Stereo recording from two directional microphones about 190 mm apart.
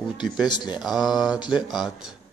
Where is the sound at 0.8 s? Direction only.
Centre (ahead or behind).